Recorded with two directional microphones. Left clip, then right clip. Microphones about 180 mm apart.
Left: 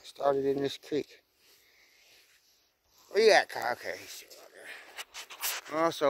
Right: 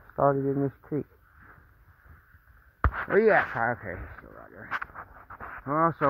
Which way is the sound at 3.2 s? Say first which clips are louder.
Right 1 dB; 25° left (ahead or behind).